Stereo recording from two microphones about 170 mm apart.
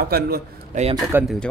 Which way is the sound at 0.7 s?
45° right (ahead or behind).